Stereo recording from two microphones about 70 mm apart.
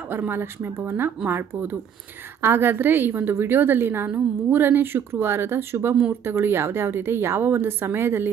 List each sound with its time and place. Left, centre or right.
0.1 s a woman's voice: right